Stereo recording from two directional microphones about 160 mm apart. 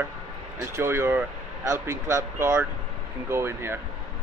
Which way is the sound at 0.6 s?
15° right (ahead or behind).